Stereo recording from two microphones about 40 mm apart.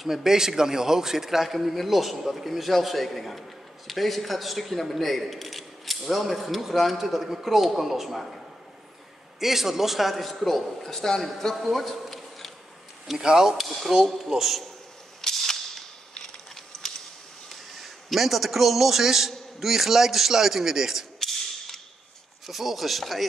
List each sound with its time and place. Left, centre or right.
0.0 s a man's voice: centre
9.4 s a man's voice: centre
11.5 s a sound: centre
13.2 s a man's voice: centre
15.2 s cap gun: centre
17.5 s a man's voice: centre
21.2 s a sound: centre
22.5 s a man's voice: centre